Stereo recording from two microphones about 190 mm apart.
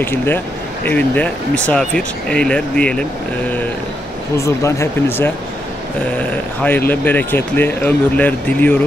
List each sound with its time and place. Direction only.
0.0 s speech: 10° left (ahead or behind)